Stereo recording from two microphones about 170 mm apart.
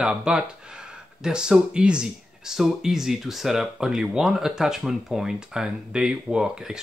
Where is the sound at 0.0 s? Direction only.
5° right (ahead or behind).